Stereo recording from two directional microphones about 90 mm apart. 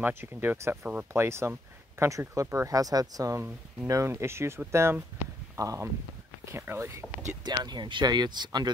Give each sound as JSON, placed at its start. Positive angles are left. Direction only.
{"t": 0.0, "sound": "speech", "side_deg": -25}
{"t": 3.9, "sound": "speech", "side_deg": -30}
{"t": 7.4, "sound": "speech", "side_deg": -55}